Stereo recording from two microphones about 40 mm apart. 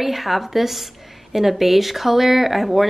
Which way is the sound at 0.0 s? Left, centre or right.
Centre.